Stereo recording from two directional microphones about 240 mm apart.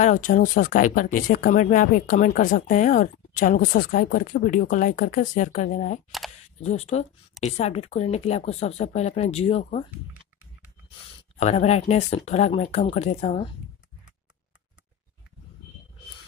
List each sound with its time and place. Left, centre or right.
0.0 s speech: left
11.3 s speech: left